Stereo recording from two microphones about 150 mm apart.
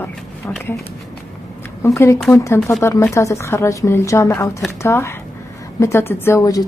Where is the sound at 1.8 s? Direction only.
20° left (ahead or behind).